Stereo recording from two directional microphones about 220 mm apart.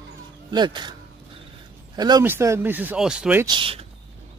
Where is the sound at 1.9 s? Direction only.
20° right (ahead or behind).